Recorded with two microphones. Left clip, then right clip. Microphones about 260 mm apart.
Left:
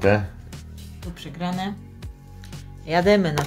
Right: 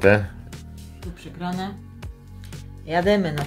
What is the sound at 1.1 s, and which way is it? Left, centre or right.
Speech, left.